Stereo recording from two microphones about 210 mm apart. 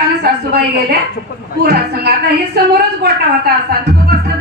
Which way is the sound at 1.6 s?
50° right (ahead or behind).